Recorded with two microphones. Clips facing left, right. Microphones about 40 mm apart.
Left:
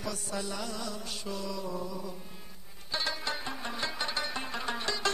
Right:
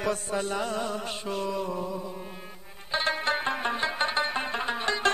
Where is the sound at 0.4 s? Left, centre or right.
Right.